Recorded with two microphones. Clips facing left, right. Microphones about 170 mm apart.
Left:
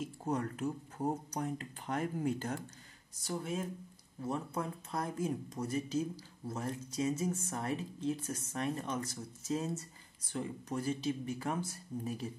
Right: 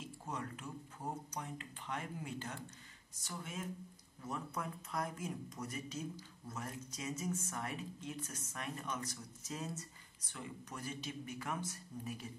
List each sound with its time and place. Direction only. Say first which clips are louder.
0.0 s speech: left 9 dB; 45° left (ahead or behind)